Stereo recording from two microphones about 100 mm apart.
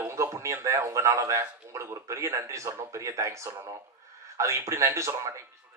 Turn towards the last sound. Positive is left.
turn(degrees=-30)  # may be behind; listen again after turning